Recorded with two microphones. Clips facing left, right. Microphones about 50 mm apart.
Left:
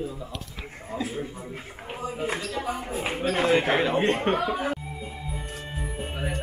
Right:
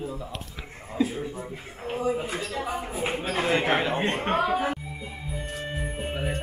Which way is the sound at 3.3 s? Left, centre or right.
Centre.